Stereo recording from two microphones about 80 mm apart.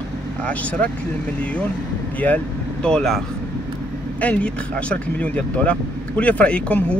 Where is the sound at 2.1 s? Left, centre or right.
Centre.